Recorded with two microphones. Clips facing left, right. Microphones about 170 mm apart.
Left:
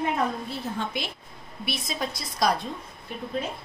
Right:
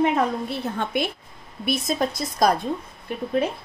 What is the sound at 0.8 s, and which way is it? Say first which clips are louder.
A woman's voice: right 6 dB; 55° right (ahead or behind).